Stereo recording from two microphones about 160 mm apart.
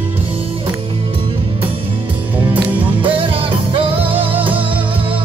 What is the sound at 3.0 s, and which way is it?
Music, 35° right (ahead or behind).